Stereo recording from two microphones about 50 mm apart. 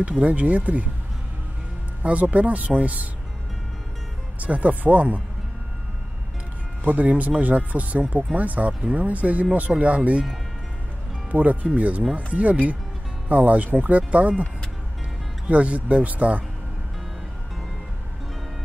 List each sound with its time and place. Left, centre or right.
0.2 s speech: right
2.0 s speech: right
4.4 s speech: right
6.8 s speech: right
11.3 s speech: right
15.4 s speech: right